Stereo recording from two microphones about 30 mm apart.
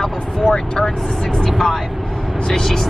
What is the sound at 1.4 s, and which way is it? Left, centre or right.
Speech, left.